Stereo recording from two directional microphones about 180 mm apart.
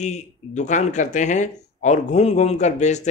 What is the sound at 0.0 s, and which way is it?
Speech, 40° left (ahead or behind).